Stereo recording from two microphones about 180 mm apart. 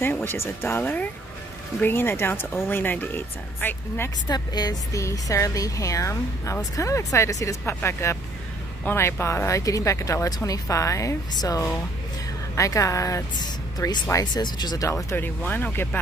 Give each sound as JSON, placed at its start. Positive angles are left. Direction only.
{"t": 0.0, "sound": "speech", "side_deg": 10}